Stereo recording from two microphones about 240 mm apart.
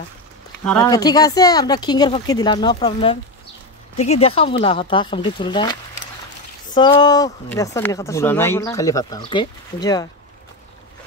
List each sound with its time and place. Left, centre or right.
0.7 s speech: centre